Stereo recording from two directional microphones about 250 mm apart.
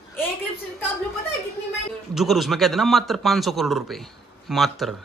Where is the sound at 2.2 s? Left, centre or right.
Centre.